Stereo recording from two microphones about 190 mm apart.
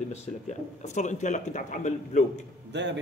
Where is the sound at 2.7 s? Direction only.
65° right (ahead or behind).